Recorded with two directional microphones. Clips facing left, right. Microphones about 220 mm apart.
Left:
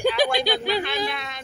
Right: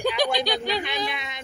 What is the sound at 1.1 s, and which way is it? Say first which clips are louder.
Female singing: left 2 dB; 20° right (ahead or behind).